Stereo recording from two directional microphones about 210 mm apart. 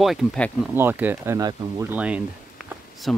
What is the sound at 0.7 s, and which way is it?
Speech, 10° right (ahead or behind).